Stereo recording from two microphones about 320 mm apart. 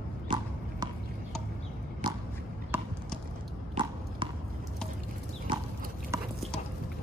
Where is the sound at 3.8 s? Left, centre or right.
Centre.